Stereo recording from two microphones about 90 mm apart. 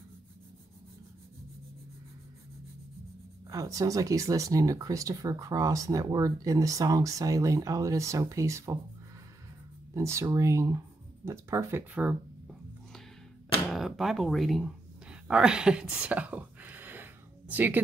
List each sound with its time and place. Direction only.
3.4 s speech: 40° right (ahead or behind)
9.9 s speech: 35° right (ahead or behind)
11.9 s speech: 15° right (ahead or behind)
13.7 s speech: 5° right (ahead or behind)
15.0 s a sound: 10° right (ahead or behind)